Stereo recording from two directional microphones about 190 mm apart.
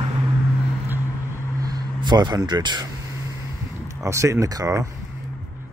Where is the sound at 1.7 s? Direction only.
20° right (ahead or behind).